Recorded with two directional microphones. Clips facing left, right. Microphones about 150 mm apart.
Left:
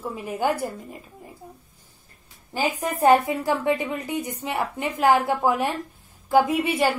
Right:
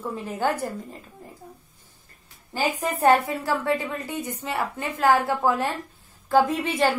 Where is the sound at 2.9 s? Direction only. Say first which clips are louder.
Left 2 dB; 15° left (ahead or behind).